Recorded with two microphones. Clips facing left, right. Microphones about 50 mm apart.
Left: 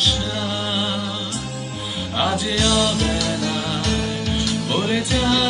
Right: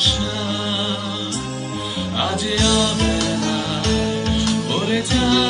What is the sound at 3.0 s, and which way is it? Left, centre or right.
Music, right.